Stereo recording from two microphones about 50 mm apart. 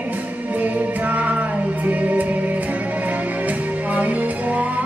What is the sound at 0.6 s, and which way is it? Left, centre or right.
Music, right.